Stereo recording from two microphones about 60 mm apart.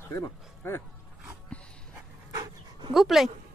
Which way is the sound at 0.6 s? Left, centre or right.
Left.